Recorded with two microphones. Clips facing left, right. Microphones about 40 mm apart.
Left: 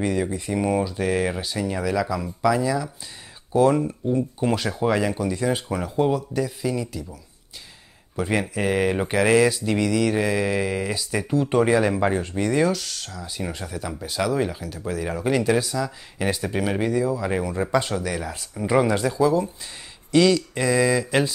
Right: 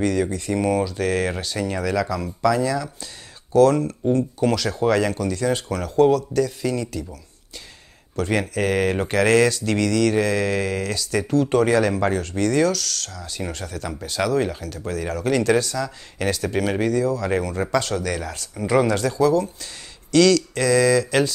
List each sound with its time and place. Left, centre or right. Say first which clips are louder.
0.0 s speech: right 2 dB; centre
8.2 s speech: right 2 dB; centre